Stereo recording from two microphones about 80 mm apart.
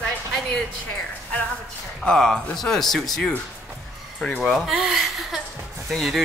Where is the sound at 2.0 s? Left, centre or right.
Centre.